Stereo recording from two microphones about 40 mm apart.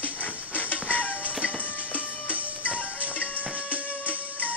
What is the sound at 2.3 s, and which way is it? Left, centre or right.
Music, right.